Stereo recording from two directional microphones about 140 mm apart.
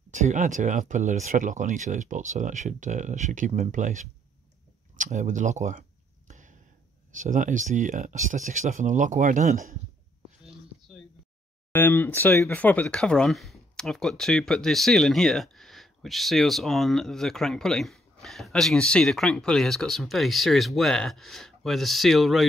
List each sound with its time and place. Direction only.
0.1 s speech: 60° right (ahead or behind)
4.9 s a sound: 65° right (ahead or behind)
7.2 s speech: 65° right (ahead or behind)
11.7 s speech: 15° left (ahead or behind)